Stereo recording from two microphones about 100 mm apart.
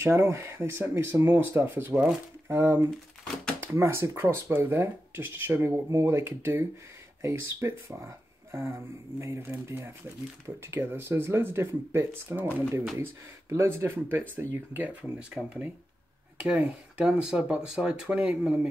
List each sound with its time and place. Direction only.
0.0 s speech: 25° right (ahead or behind)
8.5 s a sound: 25° right (ahead or behind)
9.2 s speech: 25° right (ahead or behind)